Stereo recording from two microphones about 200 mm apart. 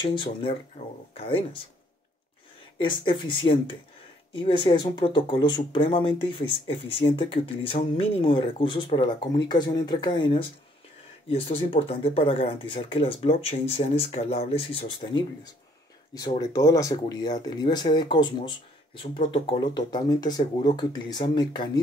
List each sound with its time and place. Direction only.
0.0 s speech: 25° left (ahead or behind)
2.8 s speech: 25° left (ahead or behind)